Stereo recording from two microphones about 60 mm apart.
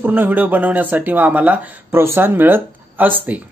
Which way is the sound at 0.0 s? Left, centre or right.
Right.